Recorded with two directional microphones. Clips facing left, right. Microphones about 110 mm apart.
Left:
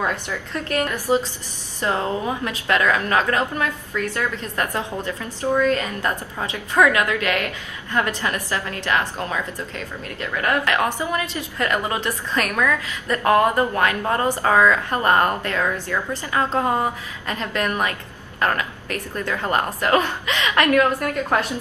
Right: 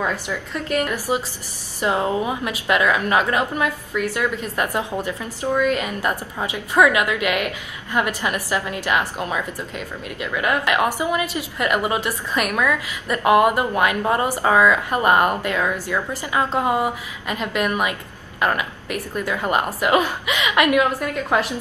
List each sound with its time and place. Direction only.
0.3 s a woman's voice: 10° right (ahead or behind)